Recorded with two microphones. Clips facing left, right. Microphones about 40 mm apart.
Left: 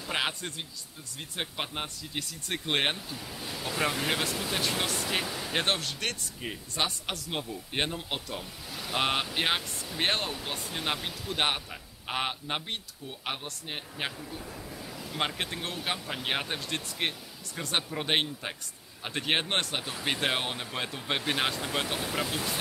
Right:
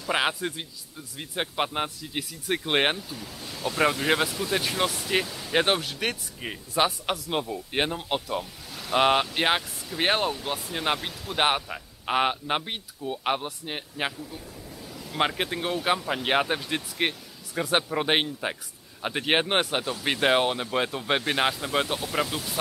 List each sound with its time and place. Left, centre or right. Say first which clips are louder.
0.1 s a man's voice: right 6 dB; centre
3.0 s speech: right 1 dB; centre
4.0 s a man's voice: right 5 dB; centre
5.2 s speech: even; centre
5.5 s a man's voice: right 7 dB; centre
14.9 s vehicle: even; centre
15.1 s a man's voice: right 6 dB; centre
19.8 s speech: right 6 dB; centre
20.1 s a man's voice: right 7 dB; centre